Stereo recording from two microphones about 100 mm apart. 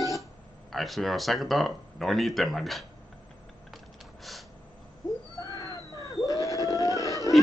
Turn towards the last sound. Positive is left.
turn(degrees=35)  # may be behind; listen again after turning